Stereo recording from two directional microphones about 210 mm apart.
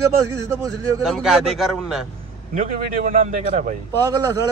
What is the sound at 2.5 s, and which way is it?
Speech, 40° right (ahead or behind).